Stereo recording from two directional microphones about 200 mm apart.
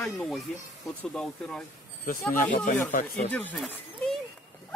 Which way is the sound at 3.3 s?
5° left (ahead or behind).